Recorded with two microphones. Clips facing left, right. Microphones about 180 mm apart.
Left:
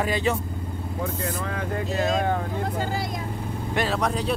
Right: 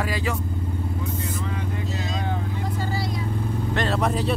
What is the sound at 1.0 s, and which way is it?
Vehicle, 55° left (ahead or behind).